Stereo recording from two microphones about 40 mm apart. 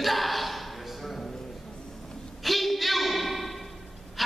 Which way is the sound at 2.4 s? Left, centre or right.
Centre.